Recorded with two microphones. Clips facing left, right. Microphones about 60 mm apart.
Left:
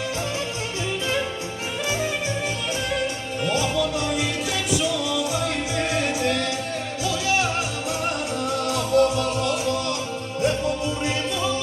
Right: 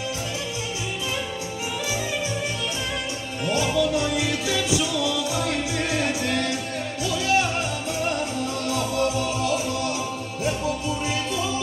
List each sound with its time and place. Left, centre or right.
3.6 s music: centre
5.9 s music: centre
8.4 s music: centre